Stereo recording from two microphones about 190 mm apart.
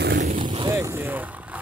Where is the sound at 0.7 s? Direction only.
15° right (ahead or behind).